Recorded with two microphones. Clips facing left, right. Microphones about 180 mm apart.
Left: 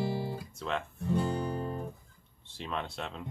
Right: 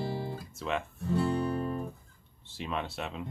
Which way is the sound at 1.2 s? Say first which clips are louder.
Right 3 dB; 15° left (ahead or behind).